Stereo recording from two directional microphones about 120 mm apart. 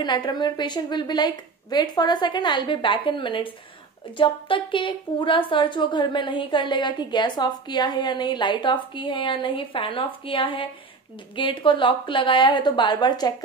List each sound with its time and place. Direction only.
0.0 s a woman's voice: 40° left (ahead or behind)